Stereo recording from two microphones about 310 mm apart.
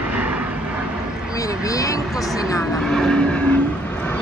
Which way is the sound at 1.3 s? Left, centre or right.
Centre.